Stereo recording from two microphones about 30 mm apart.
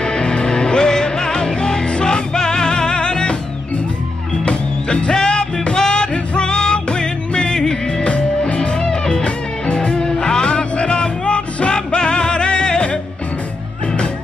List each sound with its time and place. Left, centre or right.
0.0 s music: left
4.5 s music: left
5.8 s music: left
8.0 s music: left
8.5 s music: left